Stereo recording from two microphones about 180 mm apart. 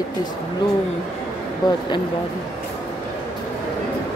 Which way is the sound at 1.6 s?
25° left (ahead or behind).